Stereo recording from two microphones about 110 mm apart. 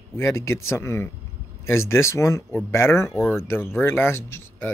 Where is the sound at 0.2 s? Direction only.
25° left (ahead or behind).